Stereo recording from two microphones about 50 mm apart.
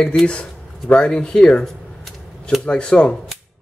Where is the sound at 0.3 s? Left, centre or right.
Left.